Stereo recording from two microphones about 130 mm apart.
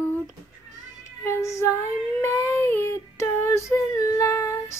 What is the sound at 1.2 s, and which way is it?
Female singing, 20° left (ahead or behind).